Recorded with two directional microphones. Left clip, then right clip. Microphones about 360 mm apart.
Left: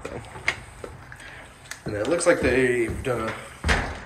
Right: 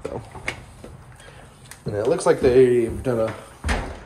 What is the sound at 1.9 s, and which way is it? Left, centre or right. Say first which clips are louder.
Speech: right 2 dB; centre.